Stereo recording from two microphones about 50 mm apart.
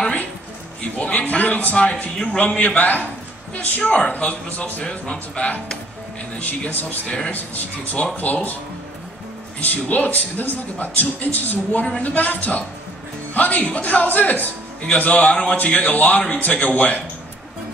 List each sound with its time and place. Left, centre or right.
0.9 s a man's voice: left
2.6 s a man's voice: left
4.8 s speech: centre
6.7 s a man's voice: left
8.2 s a man's voice: left
9.6 s a man's voice: left